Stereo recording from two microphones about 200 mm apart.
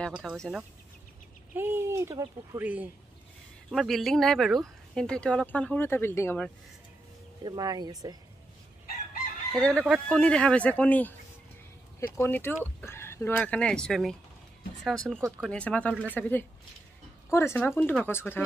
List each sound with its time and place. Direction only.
0.0 s speech: centre (ahead or behind)
7.4 s speech: 20° right (ahead or behind)
9.5 s speech: 5° left (ahead or behind)
12.2 s speech: 10° left (ahead or behind)